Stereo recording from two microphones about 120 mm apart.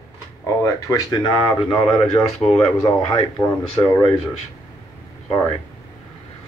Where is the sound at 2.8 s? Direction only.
45° left (ahead or behind).